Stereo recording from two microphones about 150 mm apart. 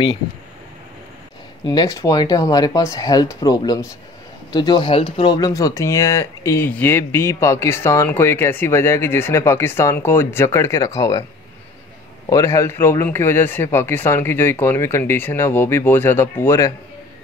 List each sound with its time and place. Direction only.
1.6 s speech: 25° left (ahead or behind)
12.3 s speech: 20° left (ahead or behind)